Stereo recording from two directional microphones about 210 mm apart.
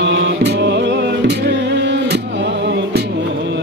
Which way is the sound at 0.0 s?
60° right (ahead or behind).